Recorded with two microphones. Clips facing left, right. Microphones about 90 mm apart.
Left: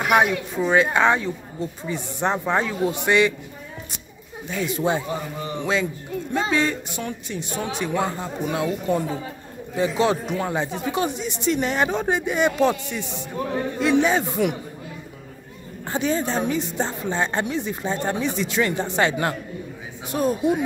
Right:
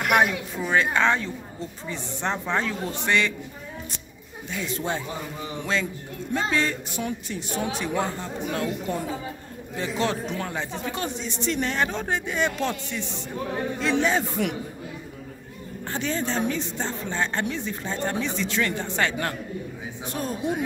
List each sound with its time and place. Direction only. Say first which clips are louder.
0.0 s a woman's voice: left 2 dB; centre (ahead or behind)
4.5 s a woman's voice: left 6 dB; 5° left (ahead or behind)
6.3 s a woman's voice: left 2 dB; centre (ahead or behind)
15.9 s a woman's voice: left 4 dB; 15° left (ahead or behind)